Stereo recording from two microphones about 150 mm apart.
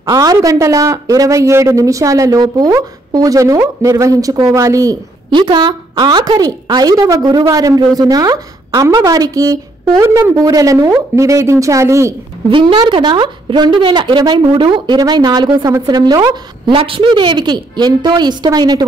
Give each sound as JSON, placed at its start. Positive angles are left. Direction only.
{"t": 0.0, "sound": "a man's voice", "side_deg": -25}
{"t": 12.4, "sound": "a man's voice", "side_deg": -35}